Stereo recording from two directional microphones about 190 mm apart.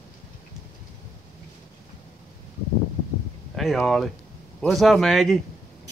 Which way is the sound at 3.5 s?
Centre (ahead or behind).